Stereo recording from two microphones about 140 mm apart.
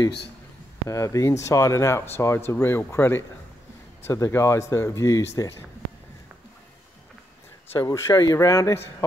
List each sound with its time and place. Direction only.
0.8 s speech: 20° left (ahead or behind)
7.7 s speech: 20° left (ahead or behind)